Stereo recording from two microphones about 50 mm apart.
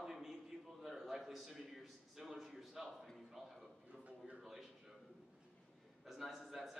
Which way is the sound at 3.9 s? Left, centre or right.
Right.